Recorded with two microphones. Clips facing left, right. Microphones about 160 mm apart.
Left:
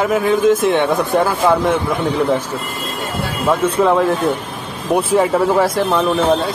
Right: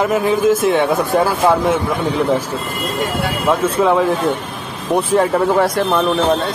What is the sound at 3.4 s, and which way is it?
Speech, centre (ahead or behind).